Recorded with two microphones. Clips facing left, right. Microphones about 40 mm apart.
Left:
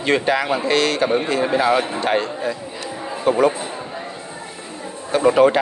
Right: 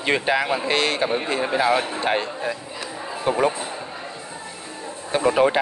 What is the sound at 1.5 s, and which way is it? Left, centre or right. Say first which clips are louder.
Speech: left 1 dB; centre.